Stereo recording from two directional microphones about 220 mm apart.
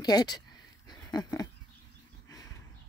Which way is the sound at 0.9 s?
20° left (ahead or behind).